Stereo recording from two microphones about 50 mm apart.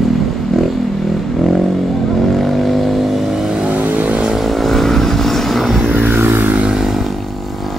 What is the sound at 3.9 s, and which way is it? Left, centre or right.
Vehicle, right.